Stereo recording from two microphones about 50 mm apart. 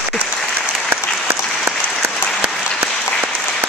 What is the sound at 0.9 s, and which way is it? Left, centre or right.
Applause, right.